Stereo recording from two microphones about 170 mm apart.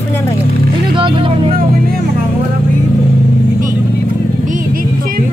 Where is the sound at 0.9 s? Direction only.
30° right (ahead or behind).